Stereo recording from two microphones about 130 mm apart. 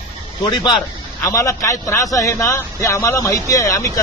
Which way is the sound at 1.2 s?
25° left (ahead or behind).